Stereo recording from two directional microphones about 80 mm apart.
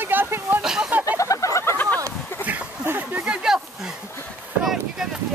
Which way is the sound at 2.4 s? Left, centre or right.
Right.